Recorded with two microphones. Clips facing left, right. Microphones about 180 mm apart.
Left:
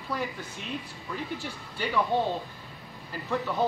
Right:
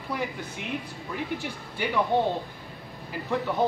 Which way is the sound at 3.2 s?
15° right (ahead or behind).